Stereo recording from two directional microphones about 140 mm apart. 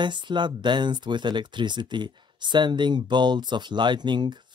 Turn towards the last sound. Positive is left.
turn(degrees=-30)  # may be behind; listen again after turning